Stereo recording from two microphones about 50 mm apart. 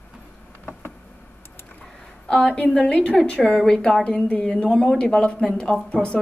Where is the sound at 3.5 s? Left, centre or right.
Centre.